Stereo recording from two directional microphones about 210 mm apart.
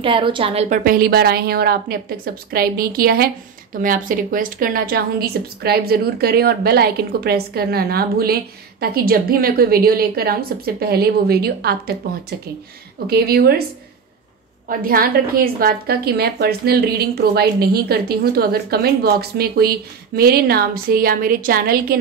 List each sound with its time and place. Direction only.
0.0 s a woman's voice: 25° right (ahead or behind)
0.8 s a woman's voice: 45° right (ahead or behind)
14.7 s a woman's voice: 45° right (ahead or behind)